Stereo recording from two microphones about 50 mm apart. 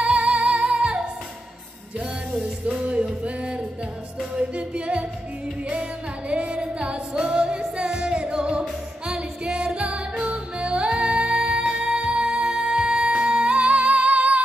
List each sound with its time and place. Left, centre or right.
0.0 s music: right
2.4 s music: right